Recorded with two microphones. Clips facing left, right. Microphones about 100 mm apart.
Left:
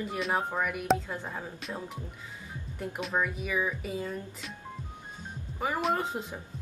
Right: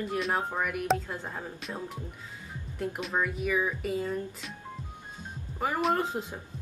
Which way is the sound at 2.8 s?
Centre (ahead or behind).